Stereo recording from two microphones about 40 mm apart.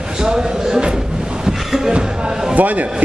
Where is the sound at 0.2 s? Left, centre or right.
Centre.